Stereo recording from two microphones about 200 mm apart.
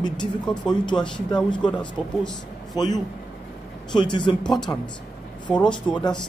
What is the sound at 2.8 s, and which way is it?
Speech, 20° left (ahead or behind).